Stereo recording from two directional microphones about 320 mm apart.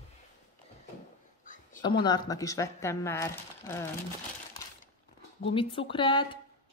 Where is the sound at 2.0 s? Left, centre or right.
Centre.